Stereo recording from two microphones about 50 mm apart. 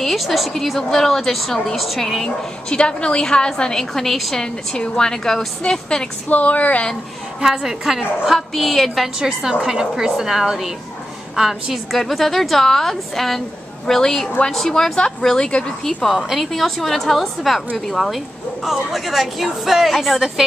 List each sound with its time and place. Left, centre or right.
0.0 s a woman's voice: centre
2.2 s a woman's voice: centre
6.2 s speech: left
7.3 s a woman's voice: centre
8.4 s a woman's voice: centre
16.2 s a woman's voice: centre